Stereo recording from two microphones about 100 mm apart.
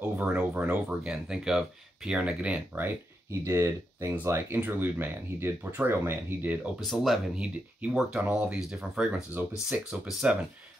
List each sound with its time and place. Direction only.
0.1 s speech: 15° right (ahead or behind)
1.0 s speech: 5° right (ahead or behind)
6.9 s speech: centre (ahead or behind)
7.3 s speech: 10° right (ahead or behind)